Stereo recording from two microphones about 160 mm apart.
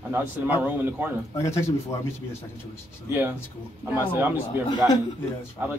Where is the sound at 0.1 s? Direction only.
10° right (ahead or behind).